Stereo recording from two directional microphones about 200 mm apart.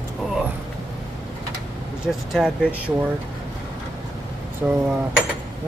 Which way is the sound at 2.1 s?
Centre (ahead or behind).